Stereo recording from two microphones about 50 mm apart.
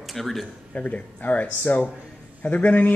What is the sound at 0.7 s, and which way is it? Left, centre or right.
Speech, left.